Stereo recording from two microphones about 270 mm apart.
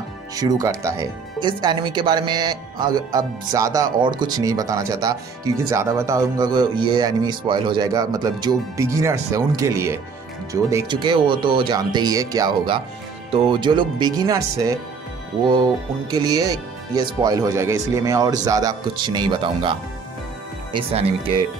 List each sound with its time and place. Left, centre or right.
0.4 s speech: centre
16.1 s speech: centre